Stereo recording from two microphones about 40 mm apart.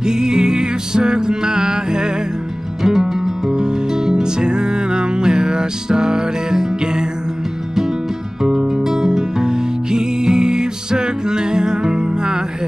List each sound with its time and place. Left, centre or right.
0.0 s music: centre
8.4 s music: centre